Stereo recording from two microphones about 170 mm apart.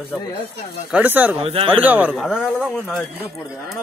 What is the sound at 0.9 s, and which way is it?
Speech, 10° right (ahead or behind).